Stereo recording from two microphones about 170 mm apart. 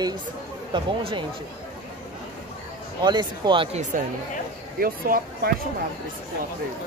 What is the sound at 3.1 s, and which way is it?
Speech, 25° right (ahead or behind).